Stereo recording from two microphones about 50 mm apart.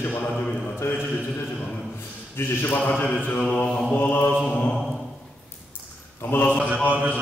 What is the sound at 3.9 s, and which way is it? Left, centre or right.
Mantra, left.